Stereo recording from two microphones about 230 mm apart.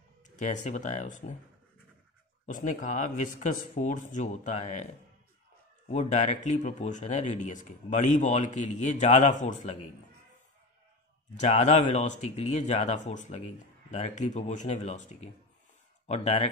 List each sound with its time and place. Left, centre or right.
0.4 s speech: left
2.4 s speech: left
5.9 s speech: left
11.3 s speech: left
16.1 s speech: left